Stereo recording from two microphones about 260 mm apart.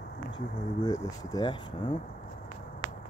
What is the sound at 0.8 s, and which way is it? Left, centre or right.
Speech, centre.